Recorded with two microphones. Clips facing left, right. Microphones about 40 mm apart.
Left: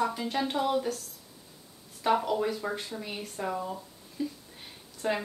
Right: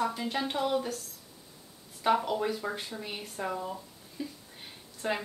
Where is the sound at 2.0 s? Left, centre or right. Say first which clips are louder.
Left 1 dB; centre.